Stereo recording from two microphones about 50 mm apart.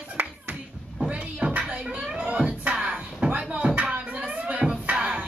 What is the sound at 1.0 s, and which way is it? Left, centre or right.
Music, right.